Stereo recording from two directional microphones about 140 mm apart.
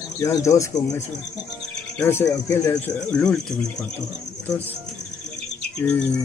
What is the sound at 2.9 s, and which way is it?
Speech, 5° left (ahead or behind).